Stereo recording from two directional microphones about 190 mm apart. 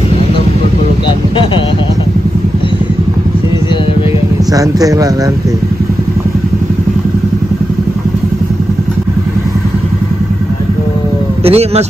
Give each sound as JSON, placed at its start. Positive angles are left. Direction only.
{"t": 4.6, "sound": "speech", "side_deg": -20}
{"t": 11.4, "sound": "speech", "side_deg": -30}